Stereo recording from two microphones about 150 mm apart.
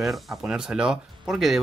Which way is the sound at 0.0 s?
Centre (ahead or behind).